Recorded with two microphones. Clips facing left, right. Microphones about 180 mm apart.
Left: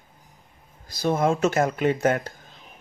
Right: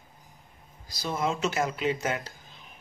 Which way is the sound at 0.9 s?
50° left (ahead or behind).